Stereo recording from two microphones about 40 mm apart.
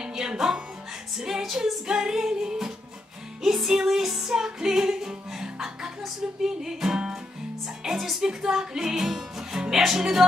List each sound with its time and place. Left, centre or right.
0.0 s music: centre